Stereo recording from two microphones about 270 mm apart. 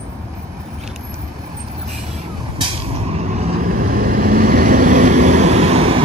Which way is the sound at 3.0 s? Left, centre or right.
Right.